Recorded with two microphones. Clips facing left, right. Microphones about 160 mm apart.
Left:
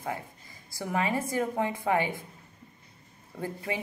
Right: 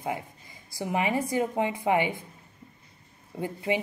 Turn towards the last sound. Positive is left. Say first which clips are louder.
# right 5 dB
turn(degrees=-20)  # may be behind; listen again after turning